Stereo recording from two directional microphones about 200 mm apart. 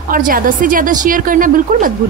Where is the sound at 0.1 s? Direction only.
45° right (ahead or behind).